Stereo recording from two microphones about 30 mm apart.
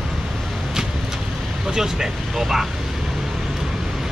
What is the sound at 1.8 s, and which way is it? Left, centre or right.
Speech, centre.